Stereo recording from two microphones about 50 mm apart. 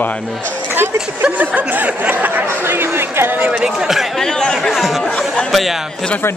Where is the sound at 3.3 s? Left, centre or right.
Right.